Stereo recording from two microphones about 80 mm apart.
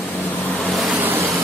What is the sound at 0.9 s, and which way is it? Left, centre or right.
Vehicle, right.